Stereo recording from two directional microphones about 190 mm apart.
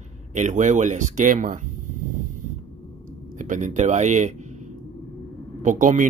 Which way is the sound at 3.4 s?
40° right (ahead or behind).